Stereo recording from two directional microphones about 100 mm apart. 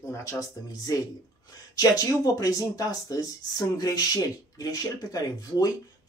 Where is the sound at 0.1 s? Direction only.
35° left (ahead or behind).